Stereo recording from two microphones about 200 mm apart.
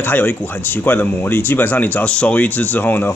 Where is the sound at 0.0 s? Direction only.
10° left (ahead or behind).